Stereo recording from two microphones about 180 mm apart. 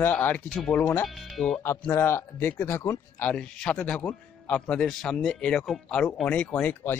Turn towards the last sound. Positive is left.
turn(degrees=10)  # may be behind; listen again after turning